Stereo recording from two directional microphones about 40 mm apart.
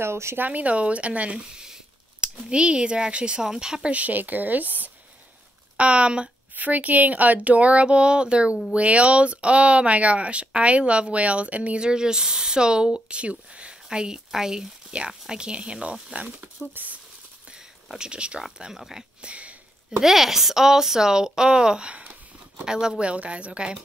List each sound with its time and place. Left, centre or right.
0.0 s speech: right
0.4 s speech: right
1.5 s a sound: centre
2.5 s speech: right
3.9 s speech: right
5.8 s speech: right
6.5 s speech: right
11.8 s speech: centre; by 17.0 s right
17.9 s speech: right
18.7 s speech: centre
19.2 s sniff: right
20.0 s speech: centre; by 22.1 s right
22.7 s speech: centre
23.0 s speech: right